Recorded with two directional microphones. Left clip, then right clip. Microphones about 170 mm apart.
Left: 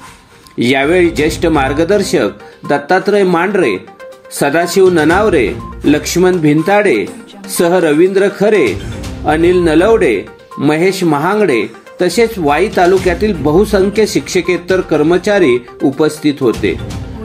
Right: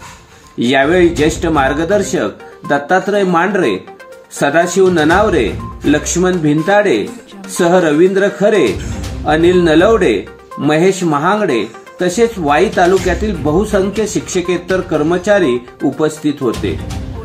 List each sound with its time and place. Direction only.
0.6 s speech: 25° left (ahead or behind)
16.6 s speech: 30° left (ahead or behind)